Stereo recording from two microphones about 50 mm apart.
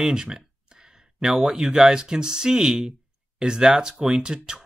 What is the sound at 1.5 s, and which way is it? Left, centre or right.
Speech, centre.